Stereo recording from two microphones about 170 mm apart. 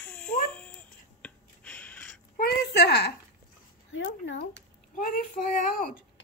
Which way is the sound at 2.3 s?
70° left (ahead or behind).